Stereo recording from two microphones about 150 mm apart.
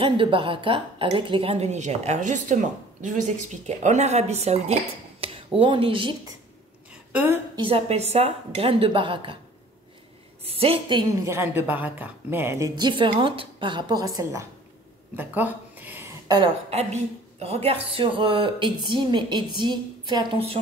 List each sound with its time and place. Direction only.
0.0 s a woman's voice: 35° right (ahead or behind)
5.2 s a sound: 40° right (ahead or behind)
5.6 s a woman's voice: 35° right (ahead or behind)
6.9 s a sound: 10° right (ahead or behind)
7.5 s a woman's voice: 35° right (ahead or behind)
10.4 s a woman's voice: 40° right (ahead or behind)
11.2 s a woman's voice: 15° right (ahead or behind)
15.1 s a sound: 10° right (ahead or behind)
16.7 s a woman's voice: 45° right (ahead or behind)